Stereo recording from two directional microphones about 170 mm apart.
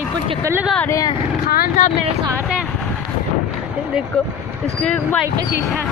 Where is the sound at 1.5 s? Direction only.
60° left (ahead or behind).